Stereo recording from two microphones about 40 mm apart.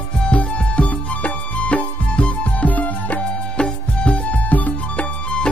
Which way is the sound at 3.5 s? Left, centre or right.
Left.